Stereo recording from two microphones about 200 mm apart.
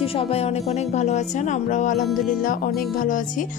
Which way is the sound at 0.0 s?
30° left (ahead or behind).